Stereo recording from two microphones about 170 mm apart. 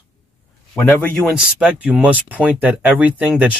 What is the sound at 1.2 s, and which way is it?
Speech, 5° right (ahead or behind).